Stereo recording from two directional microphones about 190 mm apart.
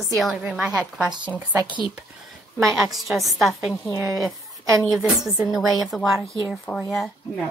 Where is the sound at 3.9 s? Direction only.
15° right (ahead or behind).